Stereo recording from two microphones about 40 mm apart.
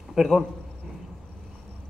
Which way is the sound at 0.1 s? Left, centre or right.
Centre.